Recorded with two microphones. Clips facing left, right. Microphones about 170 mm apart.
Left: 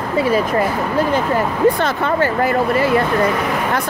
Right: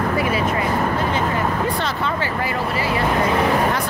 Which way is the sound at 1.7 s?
50° left (ahead or behind).